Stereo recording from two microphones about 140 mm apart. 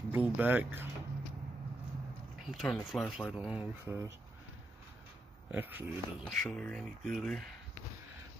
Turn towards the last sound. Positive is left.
turn(degrees=0)  # may be behind; listen again after turning